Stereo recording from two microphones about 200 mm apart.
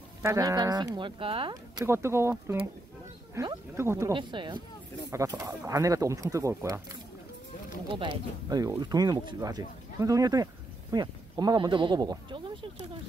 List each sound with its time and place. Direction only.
0.2 s speech: 15° right (ahead or behind)
4.1 s speech: 25° right (ahead or behind)
7.9 s speech: 25° right (ahead or behind)